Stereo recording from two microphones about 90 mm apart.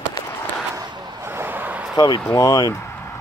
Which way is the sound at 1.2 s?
25° right (ahead or behind).